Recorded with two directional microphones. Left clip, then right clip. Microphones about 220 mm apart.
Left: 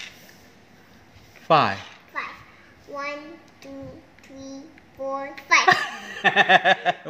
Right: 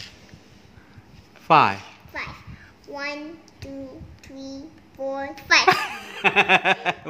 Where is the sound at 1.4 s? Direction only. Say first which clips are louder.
Right 2 dB; 15° right (ahead or behind).